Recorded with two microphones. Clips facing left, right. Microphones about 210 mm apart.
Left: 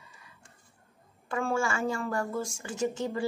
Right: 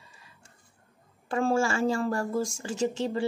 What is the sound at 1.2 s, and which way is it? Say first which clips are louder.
A woman's voice: right 4 dB; 30° right (ahead or behind).